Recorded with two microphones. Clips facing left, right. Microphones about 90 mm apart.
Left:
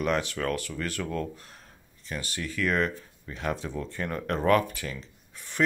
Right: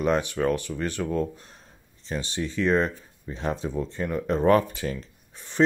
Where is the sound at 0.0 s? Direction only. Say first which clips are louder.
Right 4 dB; 20° right (ahead or behind).